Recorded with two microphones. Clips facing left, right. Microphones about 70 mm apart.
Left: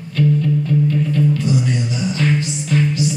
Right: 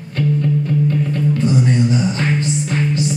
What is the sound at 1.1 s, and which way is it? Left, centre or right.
Music, right.